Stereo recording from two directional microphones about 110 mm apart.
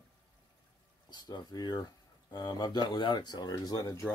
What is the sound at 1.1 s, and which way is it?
Speech, 40° left (ahead or behind).